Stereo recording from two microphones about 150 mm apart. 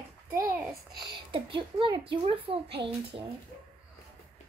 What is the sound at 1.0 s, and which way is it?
Speech, 30° right (ahead or behind).